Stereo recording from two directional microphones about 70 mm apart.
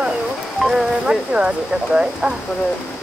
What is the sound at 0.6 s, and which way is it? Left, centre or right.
Speech, centre.